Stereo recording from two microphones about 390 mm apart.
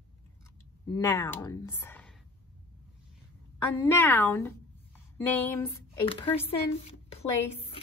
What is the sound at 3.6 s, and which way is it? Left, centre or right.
A woman's voice, centre.